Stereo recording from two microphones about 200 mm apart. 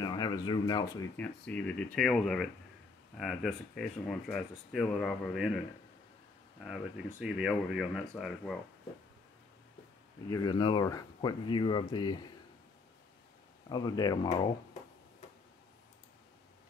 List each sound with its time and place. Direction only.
0.0 s speech: 20° left (ahead or behind)
1.1 s speech: 5° left (ahead or behind)
6.6 s speech: centre (ahead or behind)
10.3 s speech: 25° left (ahead or behind)
13.7 s speech: 20° left (ahead or behind)